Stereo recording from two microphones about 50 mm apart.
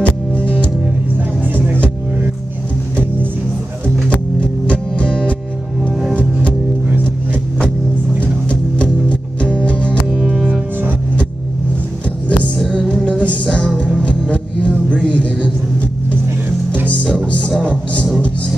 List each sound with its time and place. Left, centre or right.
0.0 s music: left
4.4 s music: left
9.1 s music: left
13.0 s music: left
15.0 s vehicle: left